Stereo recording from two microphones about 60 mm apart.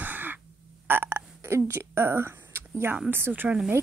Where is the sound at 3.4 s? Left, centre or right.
Centre.